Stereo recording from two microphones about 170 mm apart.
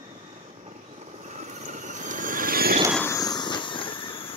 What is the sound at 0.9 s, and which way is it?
Vehicle, 40° right (ahead or behind).